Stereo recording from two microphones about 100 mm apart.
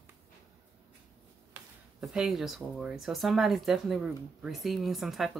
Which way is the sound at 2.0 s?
5° right (ahead or behind).